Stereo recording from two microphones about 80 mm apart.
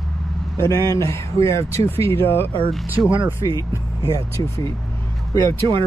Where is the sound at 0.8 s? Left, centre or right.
Left.